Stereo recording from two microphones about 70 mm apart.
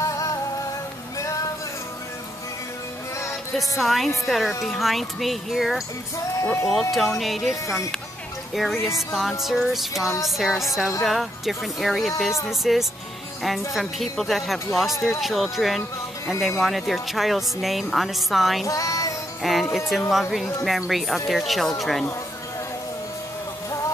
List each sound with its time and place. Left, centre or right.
0.0 s music: left
3.5 s a woman's voice: centre
6.4 s speech: left
6.7 s a woman's voice: centre
8.5 s a woman's voice: centre
18.7 s music: left
19.4 s a woman's voice: centre